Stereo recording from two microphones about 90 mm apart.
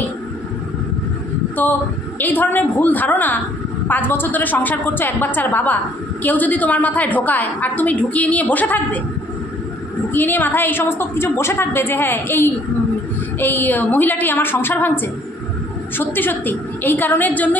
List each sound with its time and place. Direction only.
1.6 s a woman's voice: 20° left (ahead or behind)
10.1 s a woman's voice: 20° left (ahead or behind)